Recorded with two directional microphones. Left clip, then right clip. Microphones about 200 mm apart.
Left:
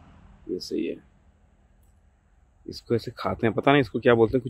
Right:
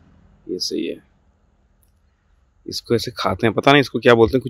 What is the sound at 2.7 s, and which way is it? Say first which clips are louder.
Speech: right 7 dB; 35° right (ahead or behind).